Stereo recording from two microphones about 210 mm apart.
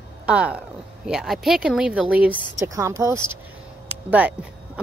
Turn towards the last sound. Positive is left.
turn(degrees=-5)  # may be behind; listen again after turning